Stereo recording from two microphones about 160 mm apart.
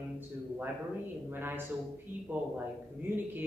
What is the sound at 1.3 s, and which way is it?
A man's voice, 15° right (ahead or behind).